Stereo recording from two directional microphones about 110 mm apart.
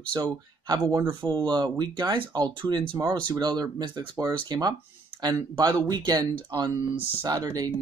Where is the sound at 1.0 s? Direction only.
20° right (ahead or behind).